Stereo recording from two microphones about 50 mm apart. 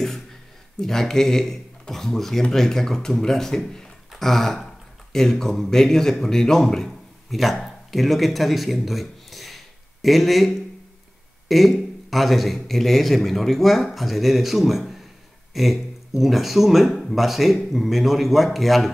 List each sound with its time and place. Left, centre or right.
0.7 s a man's voice: centre
7.2 s a man's voice: centre